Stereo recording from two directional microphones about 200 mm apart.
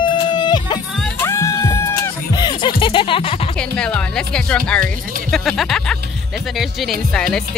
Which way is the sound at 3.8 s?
5° left (ahead or behind).